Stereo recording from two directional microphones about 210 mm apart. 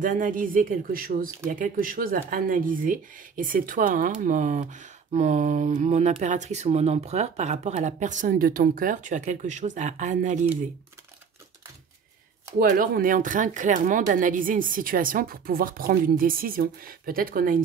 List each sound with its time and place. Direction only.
0.0 s speech: 40° right (ahead or behind)
12.5 s speech: 40° right (ahead or behind)